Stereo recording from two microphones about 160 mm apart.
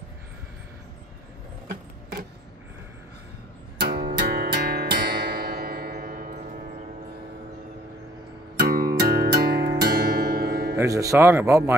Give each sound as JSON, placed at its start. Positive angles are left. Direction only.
{"t": 3.8, "sound": "music", "side_deg": -80}
{"t": 8.5, "sound": "music", "side_deg": -70}
{"t": 10.8, "sound": "speech", "side_deg": -20}